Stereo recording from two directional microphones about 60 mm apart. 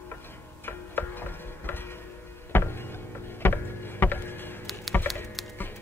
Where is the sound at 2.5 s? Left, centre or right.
Left.